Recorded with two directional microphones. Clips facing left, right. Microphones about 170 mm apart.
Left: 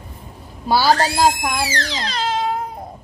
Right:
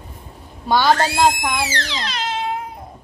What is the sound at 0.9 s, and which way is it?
Speech, 35° left (ahead or behind).